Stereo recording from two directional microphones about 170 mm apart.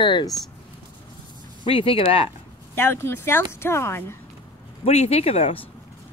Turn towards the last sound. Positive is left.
turn(degrees=35)  # may be behind; listen again after turning